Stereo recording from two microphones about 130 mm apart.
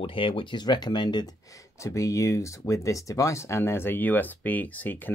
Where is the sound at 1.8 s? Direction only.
25° left (ahead or behind).